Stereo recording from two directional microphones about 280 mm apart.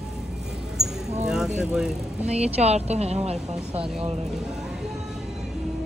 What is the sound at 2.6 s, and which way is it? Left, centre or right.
Speech, right.